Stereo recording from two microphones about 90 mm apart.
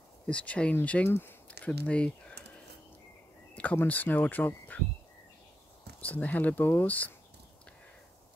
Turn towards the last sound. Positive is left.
turn(degrees=20)  # may be behind; listen again after turning